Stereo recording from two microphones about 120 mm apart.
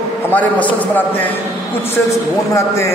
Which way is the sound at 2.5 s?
25° left (ahead or behind).